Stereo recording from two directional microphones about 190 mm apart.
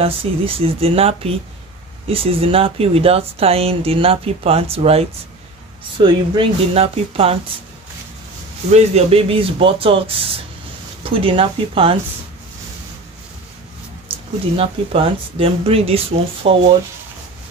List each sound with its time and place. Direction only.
0.0 s speech: 30° right (ahead or behind)
8.7 s speech: 30° right (ahead or behind)
14.1 s a sound: 30° right (ahead or behind)
14.6 s speech: 30° right (ahead or behind)